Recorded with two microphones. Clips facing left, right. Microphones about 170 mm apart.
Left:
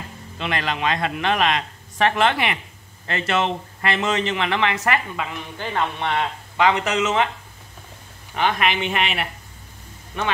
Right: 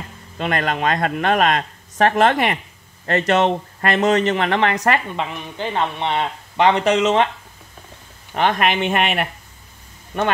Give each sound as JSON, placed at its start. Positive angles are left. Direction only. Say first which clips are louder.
{"t": 0.4, "sound": "a man's voice", "louder": "right 4 dB", "side_deg": -45}
{"t": 5.3, "sound": "a man's voice", "louder": "right 3 dB", "side_deg": -20}
{"t": 8.4, "sound": "a man's voice", "louder": "right 3 dB", "side_deg": -45}